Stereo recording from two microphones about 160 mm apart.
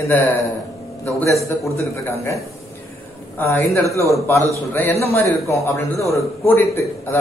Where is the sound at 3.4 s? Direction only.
10° left (ahead or behind).